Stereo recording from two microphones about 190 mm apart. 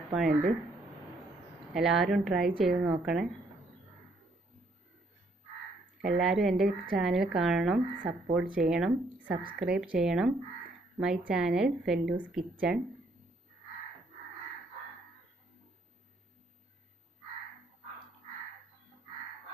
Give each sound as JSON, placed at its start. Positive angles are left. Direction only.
{"t": 0.3, "sound": "speech", "side_deg": -50}
{"t": 1.7, "sound": "a woman's voice", "side_deg": 0}
{"t": 6.1, "sound": "a woman's voice", "side_deg": 0}